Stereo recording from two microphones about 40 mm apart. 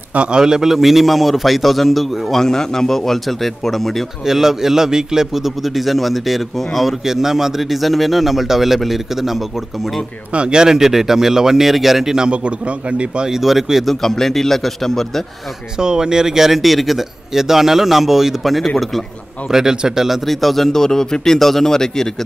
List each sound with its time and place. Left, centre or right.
0.1 s a man's voice: right
0.4 s a man's voice: centre
2.4 s speech: centre
4.3 s a man's voice: centre
10.3 s a man's voice: right
12.3 s a man's voice: right
13.3 s a man's voice: centre
13.8 s speech: centre
15.8 s a man's voice: centre
19.5 s a man's voice: centre
20.2 s speech: centre